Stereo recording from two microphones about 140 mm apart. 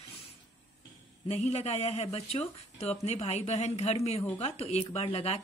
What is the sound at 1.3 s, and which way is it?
Speech, 50° left (ahead or behind).